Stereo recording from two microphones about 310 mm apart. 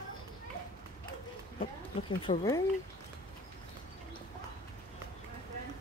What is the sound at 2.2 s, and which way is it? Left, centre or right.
Speech, centre.